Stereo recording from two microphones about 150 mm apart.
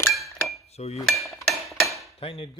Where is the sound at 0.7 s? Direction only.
45° left (ahead or behind).